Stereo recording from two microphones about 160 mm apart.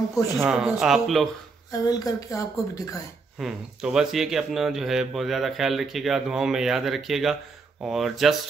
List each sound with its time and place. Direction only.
0.5 s speech: 5° right (ahead or behind)
1.7 s speech: 25° left (ahead or behind)
3.3 s speech: 5° right (ahead or behind)